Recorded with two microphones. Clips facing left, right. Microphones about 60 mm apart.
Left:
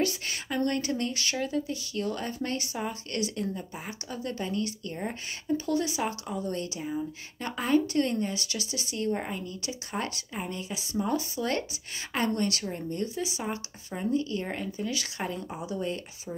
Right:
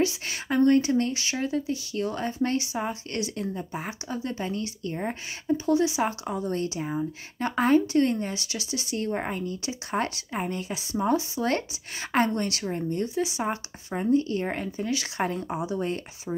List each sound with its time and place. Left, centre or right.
0.0 s speech: centre
5.9 s speech: right